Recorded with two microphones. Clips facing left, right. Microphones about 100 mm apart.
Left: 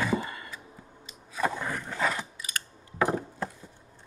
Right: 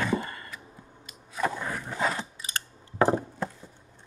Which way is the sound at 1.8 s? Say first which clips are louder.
Right 2 dB; 20° right (ahead or behind).